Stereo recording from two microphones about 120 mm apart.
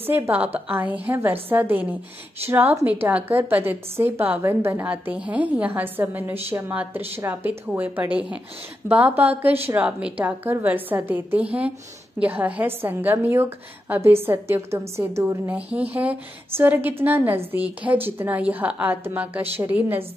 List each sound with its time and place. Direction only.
0.7 s a woman's voice: 15° right (ahead or behind)